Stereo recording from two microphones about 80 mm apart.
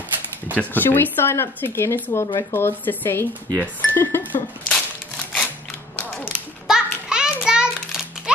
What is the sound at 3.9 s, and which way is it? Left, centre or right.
Music, left.